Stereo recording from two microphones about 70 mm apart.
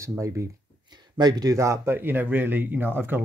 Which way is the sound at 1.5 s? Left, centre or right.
Right.